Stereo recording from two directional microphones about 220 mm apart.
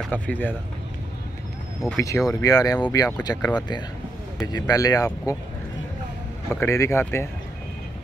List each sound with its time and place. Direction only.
0.1 s speech: 10° left (ahead or behind)
2.0 s speech: 15° left (ahead or behind)
6.5 s speech: 10° left (ahead or behind)